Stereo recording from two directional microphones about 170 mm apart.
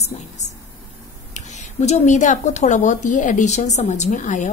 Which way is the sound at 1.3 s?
45° left (ahead or behind).